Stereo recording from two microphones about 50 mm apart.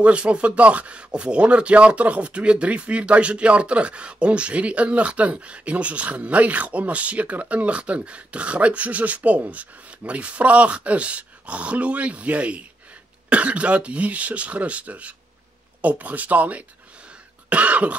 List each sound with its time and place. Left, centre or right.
0.0 s speech: right
17.5 s cough: right